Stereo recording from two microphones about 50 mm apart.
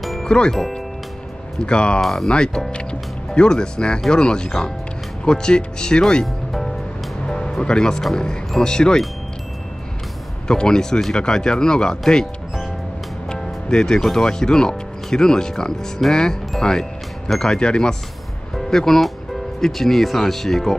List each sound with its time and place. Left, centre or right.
0.0 s music: centre
0.3 s speech: centre
1.6 s speech: centre
2.0 s speech: centre
2.3 s speech: centre
2.7 s music: centre
4.1 s speech: centre
6.2 s music: centre
7.2 s music: centre
8.2 s speech: centre
10.5 s speech: centre
13.3 s music: centre
14.0 s speech: centre
18.5 s speech: centre